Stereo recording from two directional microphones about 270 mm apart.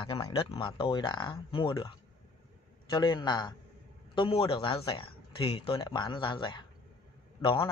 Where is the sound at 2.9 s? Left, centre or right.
Centre.